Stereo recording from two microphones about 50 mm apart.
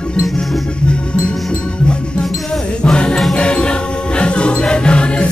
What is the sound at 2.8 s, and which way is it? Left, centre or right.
Music, centre.